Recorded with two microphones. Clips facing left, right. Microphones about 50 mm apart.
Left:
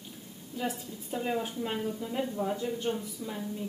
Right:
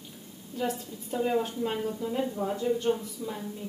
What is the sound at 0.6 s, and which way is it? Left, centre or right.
Speech, centre.